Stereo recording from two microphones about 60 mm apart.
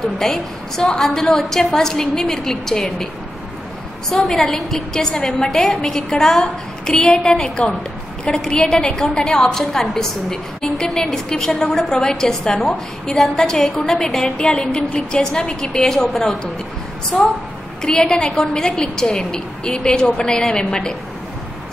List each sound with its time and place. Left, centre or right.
0.2 s a woman's voice: centre
4.1 s a woman's voice: centre
17.8 s a woman's voice: centre